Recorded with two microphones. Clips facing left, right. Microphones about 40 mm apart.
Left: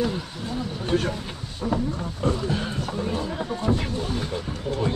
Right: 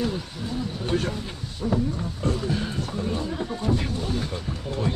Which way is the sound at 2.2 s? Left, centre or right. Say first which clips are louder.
Left 2 dB; centre.